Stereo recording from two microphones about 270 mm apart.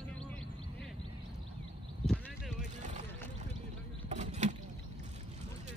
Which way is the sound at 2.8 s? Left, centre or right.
Right.